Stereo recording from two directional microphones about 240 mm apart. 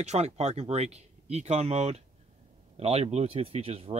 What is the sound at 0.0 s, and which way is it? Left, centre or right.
Speech, right.